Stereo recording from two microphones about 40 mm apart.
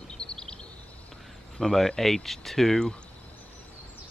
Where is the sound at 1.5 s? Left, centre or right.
Centre.